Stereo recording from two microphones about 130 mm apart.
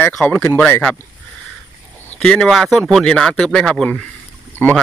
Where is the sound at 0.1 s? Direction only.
15° left (ahead or behind).